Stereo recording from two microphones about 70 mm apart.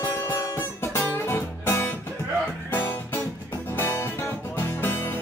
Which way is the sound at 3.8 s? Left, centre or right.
Left.